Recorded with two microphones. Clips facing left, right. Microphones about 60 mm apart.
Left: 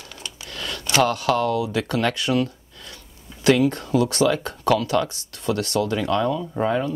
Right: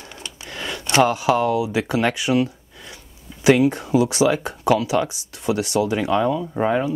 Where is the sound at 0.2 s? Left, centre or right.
Right.